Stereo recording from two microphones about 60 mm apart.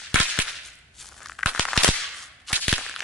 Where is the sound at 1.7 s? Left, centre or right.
Centre.